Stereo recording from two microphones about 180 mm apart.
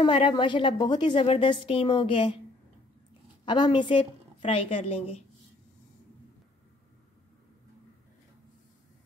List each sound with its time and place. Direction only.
0.0 s a woman's voice: 25° left (ahead or behind)
3.4 s a woman's voice: 25° left (ahead or behind)